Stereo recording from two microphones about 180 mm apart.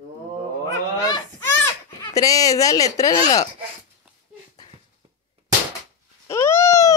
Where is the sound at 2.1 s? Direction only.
20° left (ahead or behind).